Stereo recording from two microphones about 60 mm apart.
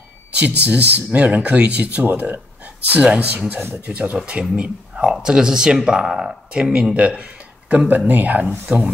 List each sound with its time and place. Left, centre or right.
0.7 s speech: right